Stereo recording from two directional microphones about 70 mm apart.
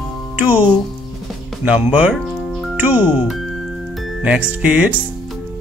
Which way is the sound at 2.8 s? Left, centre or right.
Right.